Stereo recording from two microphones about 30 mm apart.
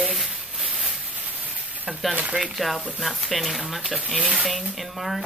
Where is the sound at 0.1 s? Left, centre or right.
Centre.